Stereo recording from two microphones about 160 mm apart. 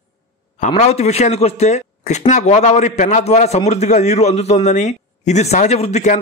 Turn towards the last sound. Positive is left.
turn(degrees=45)  # may be behind; listen again after turning